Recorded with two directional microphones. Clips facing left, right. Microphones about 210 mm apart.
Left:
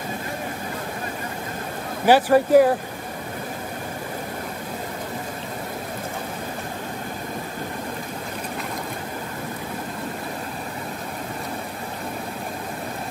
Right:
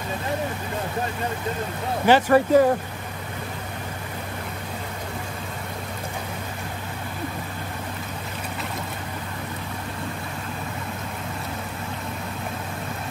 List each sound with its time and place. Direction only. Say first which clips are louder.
2.0 s speech: left 1 dB; 10° left (ahead or behind)